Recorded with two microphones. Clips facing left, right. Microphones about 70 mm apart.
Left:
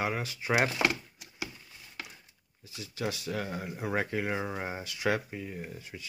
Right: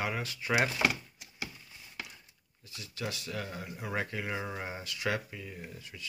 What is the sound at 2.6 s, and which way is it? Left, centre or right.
Speech, centre.